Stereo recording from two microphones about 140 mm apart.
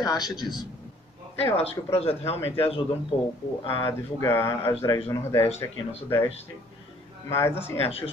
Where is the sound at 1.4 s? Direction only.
45° left (ahead or behind).